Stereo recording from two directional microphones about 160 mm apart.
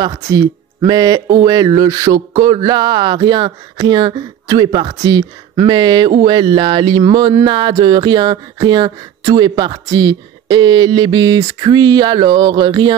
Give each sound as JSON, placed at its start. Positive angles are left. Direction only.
{"t": 0.0, "sound": "speech", "side_deg": -20}